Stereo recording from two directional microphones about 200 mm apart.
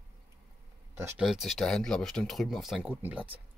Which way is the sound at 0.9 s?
10° right (ahead or behind).